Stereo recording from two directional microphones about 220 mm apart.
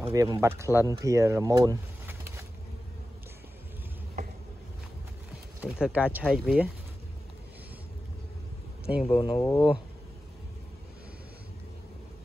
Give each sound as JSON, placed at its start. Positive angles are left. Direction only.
{"t": 0.0, "sound": "speech", "side_deg": -15}
{"t": 5.6, "sound": "speech", "side_deg": -5}
{"t": 9.1, "sound": "speech", "side_deg": 25}
{"t": 9.4, "sound": "speech", "side_deg": 10}